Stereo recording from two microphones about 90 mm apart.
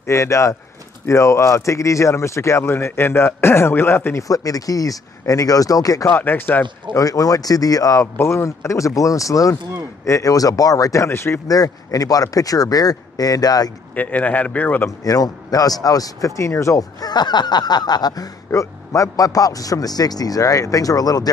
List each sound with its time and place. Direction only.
0.0 s speech: 35° left (ahead or behind)
4.2 s speech: 40° left (ahead or behind)
6.0 s speech: 25° left (ahead or behind)
6.9 s speech: 40° left (ahead or behind)
11.4 s a man's voice: 40° left (ahead or behind)
13.9 s a man's voice: 20° left (ahead or behind)
15.0 s a man's voice: 45° left (ahead or behind)